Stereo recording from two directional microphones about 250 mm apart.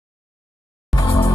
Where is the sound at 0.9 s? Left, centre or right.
Centre.